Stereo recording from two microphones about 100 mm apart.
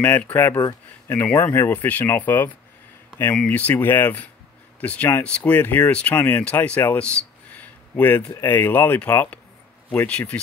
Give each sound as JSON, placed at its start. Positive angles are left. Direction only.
{"t": 0.0, "sound": "speech", "side_deg": 20}
{"t": 0.6, "sound": "speech", "side_deg": 35}
{"t": 1.1, "sound": "speech", "side_deg": 20}